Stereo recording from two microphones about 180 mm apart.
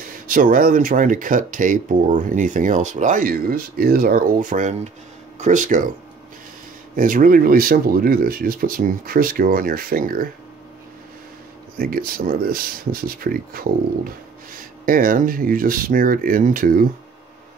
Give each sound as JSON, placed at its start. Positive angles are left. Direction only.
{"t": 0.3, "sound": "speech", "side_deg": -50}
{"t": 7.0, "sound": "speech", "side_deg": -50}
{"t": 11.8, "sound": "speech", "side_deg": -55}